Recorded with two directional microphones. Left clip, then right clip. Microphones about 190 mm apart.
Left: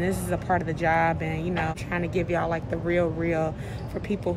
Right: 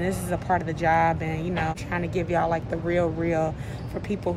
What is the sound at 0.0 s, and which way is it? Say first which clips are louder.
A woman's voice: even; 15° left (ahead or behind).